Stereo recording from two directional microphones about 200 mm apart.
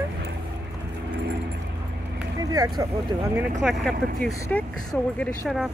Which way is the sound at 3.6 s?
Centre (ahead or behind).